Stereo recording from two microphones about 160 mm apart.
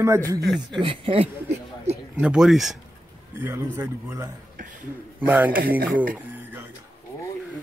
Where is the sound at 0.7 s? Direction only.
35° right (ahead or behind).